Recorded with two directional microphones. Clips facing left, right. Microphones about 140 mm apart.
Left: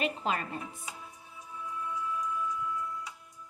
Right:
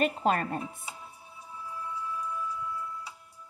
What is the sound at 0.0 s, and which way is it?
Speech, 45° right (ahead or behind).